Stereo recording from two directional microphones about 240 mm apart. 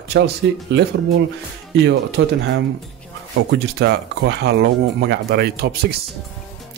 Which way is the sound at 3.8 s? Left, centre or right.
Right.